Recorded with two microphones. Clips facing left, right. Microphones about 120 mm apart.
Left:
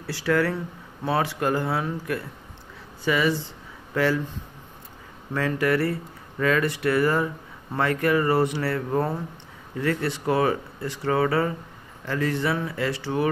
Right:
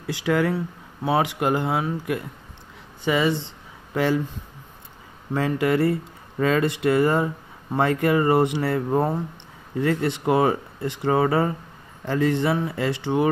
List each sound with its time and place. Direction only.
0.0 s speech: 15° right (ahead or behind)